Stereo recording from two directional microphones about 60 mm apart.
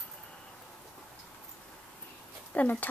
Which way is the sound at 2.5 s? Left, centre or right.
Left.